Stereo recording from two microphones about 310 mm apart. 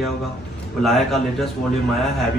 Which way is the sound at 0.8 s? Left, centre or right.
Centre.